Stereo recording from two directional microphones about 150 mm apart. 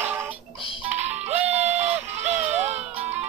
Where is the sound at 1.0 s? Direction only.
45° right (ahead or behind).